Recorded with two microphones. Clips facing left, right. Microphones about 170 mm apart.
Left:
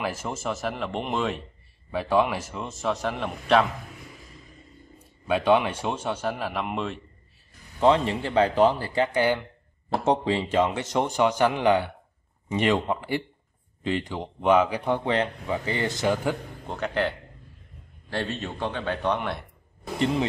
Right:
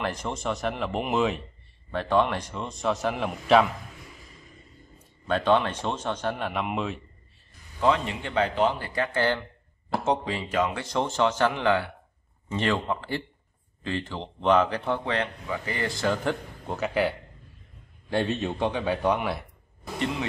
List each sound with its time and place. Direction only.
0.0 s a man's voice: 5° left (ahead or behind)
5.2 s a man's voice: 10° left (ahead or behind)
7.8 s speech: 30° left (ahead or behind)
9.0 s a man's voice: 15° left (ahead or behind)
10.0 s a man's voice: 30° left (ahead or behind); by 15.0 s 10° left (ahead or behind)
15.0 s speech: 25° left (ahead or behind)
16.6 s a man's voice: 5° right (ahead or behind)
18.1 s a man's voice: 15° right (ahead or behind)